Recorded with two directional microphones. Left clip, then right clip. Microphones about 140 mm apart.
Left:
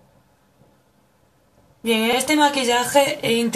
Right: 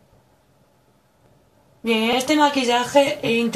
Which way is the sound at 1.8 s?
25° left (ahead or behind).